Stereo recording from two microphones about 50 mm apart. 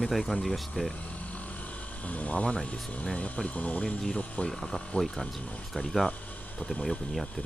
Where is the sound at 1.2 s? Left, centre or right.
Left.